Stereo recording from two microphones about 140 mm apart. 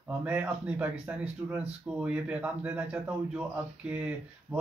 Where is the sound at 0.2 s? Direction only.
10° right (ahead or behind).